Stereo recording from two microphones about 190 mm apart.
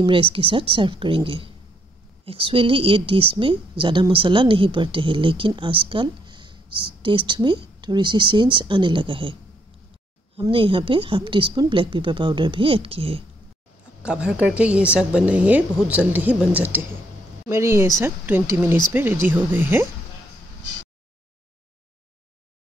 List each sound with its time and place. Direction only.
0.0 s a woman's voice: 25° right (ahead or behind)
10.4 s a woman's voice: 25° right (ahead or behind)
14.0 s a woman's voice: 5° right (ahead or behind)